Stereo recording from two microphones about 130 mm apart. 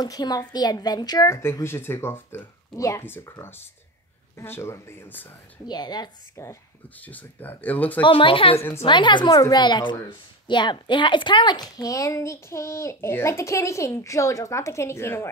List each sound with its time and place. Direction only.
0.0 s a woman's voice: 30° left (ahead or behind); by 5.3 s 15° left (ahead or behind)
5.7 s speech: 30° left (ahead or behind)
7.0 s speech: 10° left (ahead or behind)
8.0 s a woman's voice: 40° left (ahead or behind); by 15.3 s 20° left (ahead or behind)